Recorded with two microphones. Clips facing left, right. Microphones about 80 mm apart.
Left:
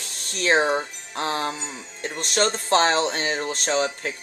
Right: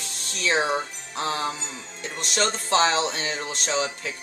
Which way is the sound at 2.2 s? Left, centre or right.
Left.